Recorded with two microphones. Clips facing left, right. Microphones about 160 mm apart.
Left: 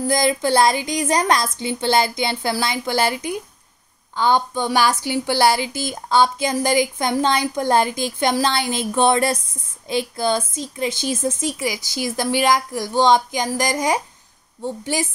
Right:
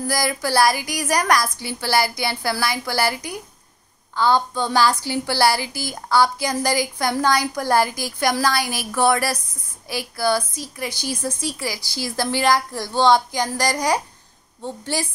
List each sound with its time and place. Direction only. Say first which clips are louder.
0.0 s a woman's voice: left 4 dB; 20° left (ahead or behind)